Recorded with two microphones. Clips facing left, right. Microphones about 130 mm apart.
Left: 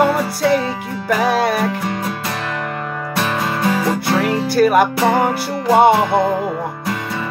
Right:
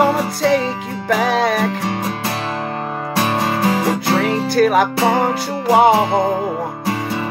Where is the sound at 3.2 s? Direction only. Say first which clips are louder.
Right 2 dB; 25° right (ahead or behind).